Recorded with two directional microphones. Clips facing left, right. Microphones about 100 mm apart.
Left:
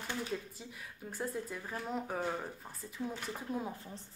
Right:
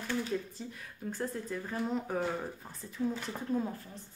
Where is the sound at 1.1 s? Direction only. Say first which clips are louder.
Right 2 dB; 5° left (ahead or behind).